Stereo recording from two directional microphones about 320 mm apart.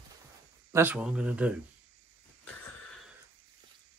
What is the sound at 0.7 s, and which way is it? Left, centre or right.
Speech, centre.